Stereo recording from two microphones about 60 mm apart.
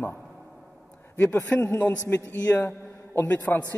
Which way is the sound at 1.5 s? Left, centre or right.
Left.